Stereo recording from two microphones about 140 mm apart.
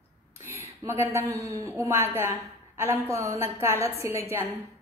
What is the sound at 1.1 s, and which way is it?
A woman's voice, 20° right (ahead or behind).